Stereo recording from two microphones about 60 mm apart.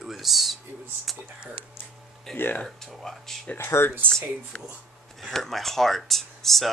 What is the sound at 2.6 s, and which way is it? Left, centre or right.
Speech, centre.